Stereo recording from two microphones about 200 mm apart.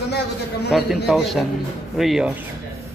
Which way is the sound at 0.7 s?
Centre (ahead or behind).